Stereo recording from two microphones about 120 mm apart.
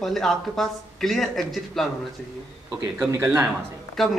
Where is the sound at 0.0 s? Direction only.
Centre (ahead or behind).